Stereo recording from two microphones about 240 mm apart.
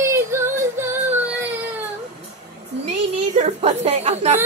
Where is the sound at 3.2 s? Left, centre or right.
Right.